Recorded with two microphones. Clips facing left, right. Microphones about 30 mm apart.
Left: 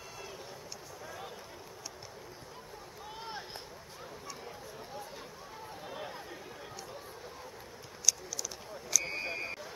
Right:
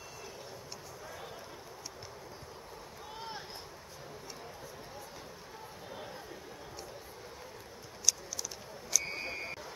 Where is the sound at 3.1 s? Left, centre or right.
Centre.